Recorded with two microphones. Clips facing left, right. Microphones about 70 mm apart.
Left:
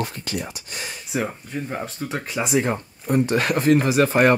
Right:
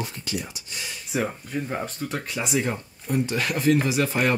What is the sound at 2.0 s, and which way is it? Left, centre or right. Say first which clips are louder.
Speech: left 3 dB; centre.